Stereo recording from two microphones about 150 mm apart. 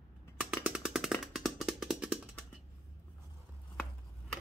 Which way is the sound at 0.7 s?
5° right (ahead or behind).